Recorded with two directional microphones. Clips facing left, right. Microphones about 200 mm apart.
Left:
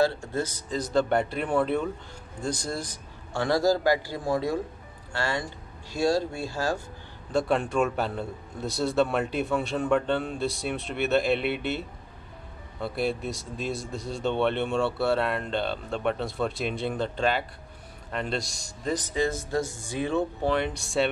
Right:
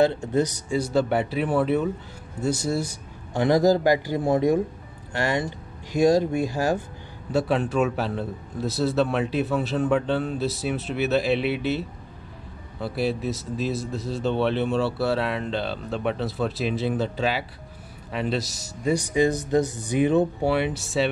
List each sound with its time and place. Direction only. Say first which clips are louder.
0.0 s speech: right 5 dB; 20° right (ahead or behind)
7.3 s speech: right 2 dB; centre (ahead or behind)
12.8 s speech: right 3 dB; centre (ahead or behind)
20.5 s speech: right 2 dB; 5° right (ahead or behind)